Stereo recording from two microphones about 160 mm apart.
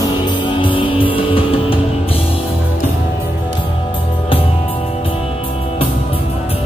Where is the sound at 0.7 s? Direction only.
35° left (ahead or behind).